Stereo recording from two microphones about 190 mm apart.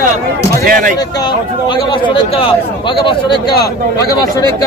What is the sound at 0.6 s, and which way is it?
Speech, 45° right (ahead or behind).